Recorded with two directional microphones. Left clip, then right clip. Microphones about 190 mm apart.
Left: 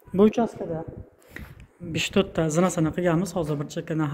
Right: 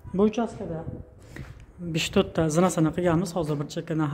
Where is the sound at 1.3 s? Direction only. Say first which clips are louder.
Left 3 dB; centre (ahead or behind).